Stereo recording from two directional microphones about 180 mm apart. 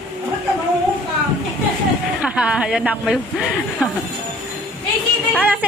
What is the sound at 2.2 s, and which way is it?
Speech, 5° right (ahead or behind).